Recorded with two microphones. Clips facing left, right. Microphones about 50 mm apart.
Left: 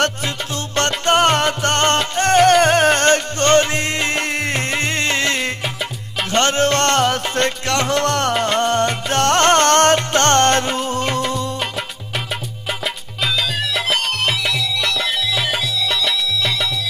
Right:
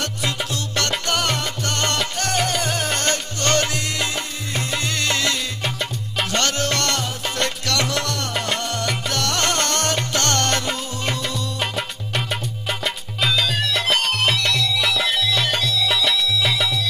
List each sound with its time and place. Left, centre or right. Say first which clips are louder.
0.7 s salsa music: left 8 dB; left
2.0 s music: left 8 dB; left
8.1 s music: left 7 dB; left
12.8 s music: even; centre